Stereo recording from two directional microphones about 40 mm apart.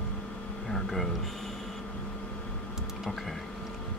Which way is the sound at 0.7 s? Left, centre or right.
Centre.